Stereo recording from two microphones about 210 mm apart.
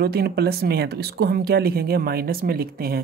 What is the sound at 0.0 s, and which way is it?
Speech, 50° right (ahead or behind).